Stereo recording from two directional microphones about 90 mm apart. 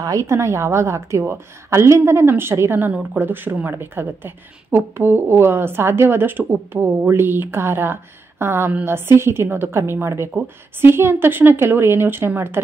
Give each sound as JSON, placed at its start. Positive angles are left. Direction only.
{"t": 0.0, "sound": "a woman's voice", "side_deg": -35}